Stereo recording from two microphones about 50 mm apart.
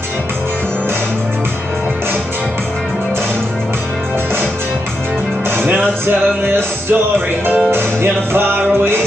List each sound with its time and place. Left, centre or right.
5.6 s music: right